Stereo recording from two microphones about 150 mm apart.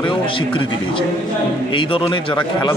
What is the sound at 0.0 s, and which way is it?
A man's voice, 35° left (ahead or behind).